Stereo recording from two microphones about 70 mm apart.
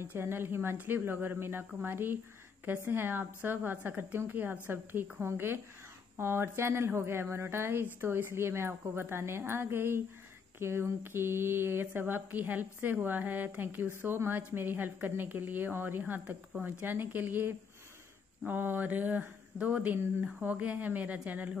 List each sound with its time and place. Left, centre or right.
0.0 s a woman's voice: right